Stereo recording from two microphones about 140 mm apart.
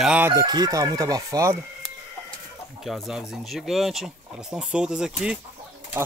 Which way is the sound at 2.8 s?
Centre (ahead or behind).